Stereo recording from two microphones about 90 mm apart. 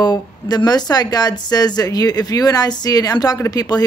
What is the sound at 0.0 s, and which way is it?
Speech, 50° left (ahead or behind).